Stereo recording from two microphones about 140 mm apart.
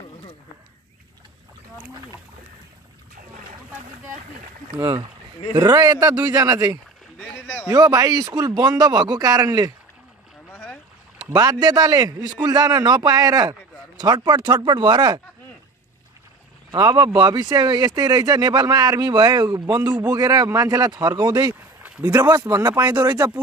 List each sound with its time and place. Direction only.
4.7 s speech: 30° right (ahead or behind)
7.2 s rowboat: 5° left (ahead or behind)
7.6 s speech: 25° right (ahead or behind)
10.5 s boat: 10° left (ahead or behind)
11.1 s speech: 25° right (ahead or behind)
16.7 s speech: 25° right (ahead or behind)